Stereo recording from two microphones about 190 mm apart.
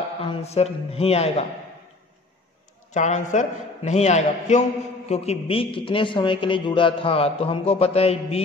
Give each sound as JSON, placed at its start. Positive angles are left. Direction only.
{"t": 0.2, "sound": "a man's voice", "side_deg": 30}
{"t": 2.9, "sound": "a man's voice", "side_deg": 40}